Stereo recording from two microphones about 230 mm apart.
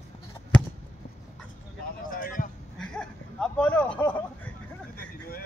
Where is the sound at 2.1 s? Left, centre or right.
Left.